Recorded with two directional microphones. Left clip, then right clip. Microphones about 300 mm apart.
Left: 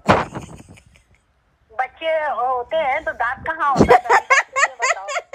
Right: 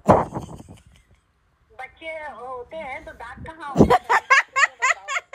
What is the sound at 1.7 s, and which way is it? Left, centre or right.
A woman's voice, centre.